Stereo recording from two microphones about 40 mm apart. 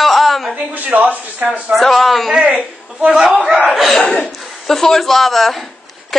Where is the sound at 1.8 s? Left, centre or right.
Centre.